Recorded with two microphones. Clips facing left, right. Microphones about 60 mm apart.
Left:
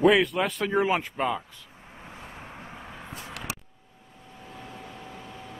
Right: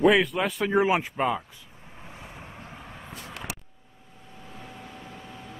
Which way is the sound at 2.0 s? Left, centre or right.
Centre.